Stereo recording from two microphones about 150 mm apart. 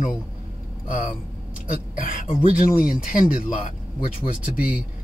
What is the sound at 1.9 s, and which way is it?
Speech, 65° left (ahead or behind).